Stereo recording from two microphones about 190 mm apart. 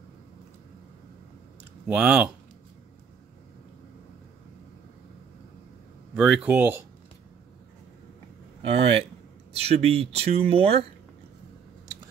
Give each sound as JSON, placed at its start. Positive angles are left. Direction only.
{"t": 1.9, "sound": "speech", "side_deg": -5}
{"t": 6.1, "sound": "speech", "side_deg": -5}
{"t": 8.6, "sound": "speech", "side_deg": -30}